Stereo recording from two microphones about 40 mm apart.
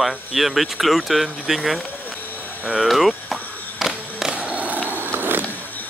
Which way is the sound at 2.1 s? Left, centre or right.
Left.